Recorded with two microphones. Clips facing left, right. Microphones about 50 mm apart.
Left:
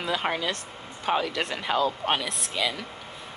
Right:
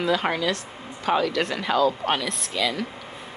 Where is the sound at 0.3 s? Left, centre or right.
Left.